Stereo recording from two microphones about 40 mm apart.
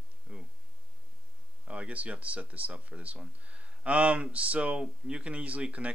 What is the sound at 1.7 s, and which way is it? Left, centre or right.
Speech, right.